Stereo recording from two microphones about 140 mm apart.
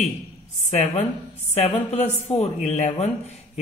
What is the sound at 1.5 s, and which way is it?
Speech, 50° left (ahead or behind).